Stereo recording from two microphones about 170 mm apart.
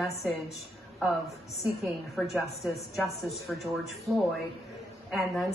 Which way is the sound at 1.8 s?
Centre (ahead or behind).